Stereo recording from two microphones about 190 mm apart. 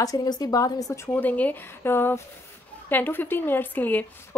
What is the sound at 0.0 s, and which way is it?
A woman's voice, 20° left (ahead or behind).